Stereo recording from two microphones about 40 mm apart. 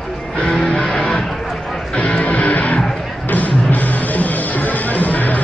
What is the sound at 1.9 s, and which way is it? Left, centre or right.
Music, left.